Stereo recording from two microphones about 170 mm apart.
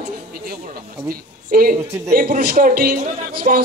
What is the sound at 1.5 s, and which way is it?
A man's voice, 60° right (ahead or behind).